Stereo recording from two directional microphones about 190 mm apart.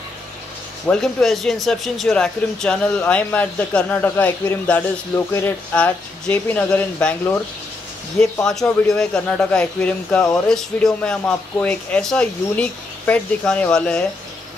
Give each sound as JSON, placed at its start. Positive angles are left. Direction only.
{"t": 0.8, "sound": "speech", "side_deg": 0}